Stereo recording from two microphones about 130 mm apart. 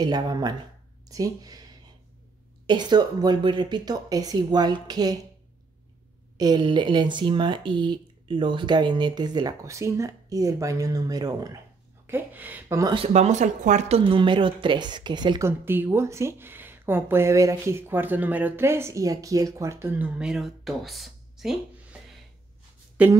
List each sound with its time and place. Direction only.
0.0 s speech: 30° right (ahead or behind)
6.3 s speech: 30° right (ahead or behind)
12.1 s speech: 15° right (ahead or behind)
13.1 s speech: 60° right (ahead or behind); by 15.4 s 35° right (ahead or behind)
15.4 s speech: 15° right (ahead or behind); by 21.5 s centre (ahead or behind)
23.0 s speech: 10° right (ahead or behind)